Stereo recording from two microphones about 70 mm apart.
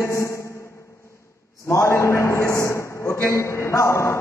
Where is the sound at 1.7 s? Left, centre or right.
Left.